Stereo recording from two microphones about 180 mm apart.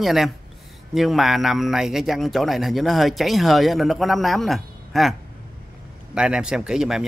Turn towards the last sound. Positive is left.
turn(degrees=-5)  # may be behind; listen again after turning